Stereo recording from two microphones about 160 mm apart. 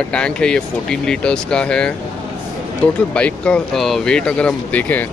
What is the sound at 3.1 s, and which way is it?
Speech, 5° left (ahead or behind).